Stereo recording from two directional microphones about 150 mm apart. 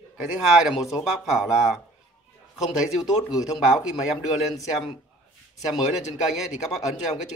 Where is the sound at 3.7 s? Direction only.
Centre (ahead or behind).